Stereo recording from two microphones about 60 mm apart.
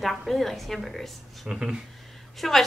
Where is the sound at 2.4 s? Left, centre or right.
Centre.